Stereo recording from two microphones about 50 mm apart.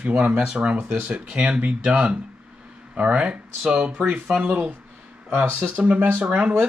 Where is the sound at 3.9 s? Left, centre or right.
Right.